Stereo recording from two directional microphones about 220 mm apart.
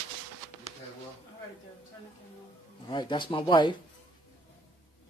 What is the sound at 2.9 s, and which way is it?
Speech, 20° left (ahead or behind).